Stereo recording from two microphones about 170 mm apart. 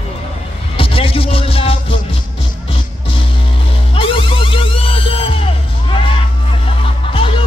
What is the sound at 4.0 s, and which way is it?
Music, 30° left (ahead or behind).